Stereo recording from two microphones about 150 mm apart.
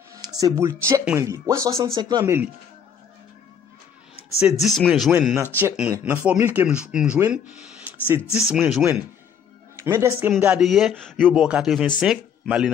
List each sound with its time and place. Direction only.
0.4 s speech: 20° right (ahead or behind)
2.2 s speech: 15° right (ahead or behind)
4.6 s speech: centre (ahead or behind)
5.4 s speech: 15° right (ahead or behind)
8.5 s speech: centre (ahead or behind)
9.8 s speech: 20° right (ahead or behind)
10.4 s speech: 5° right (ahead or behind)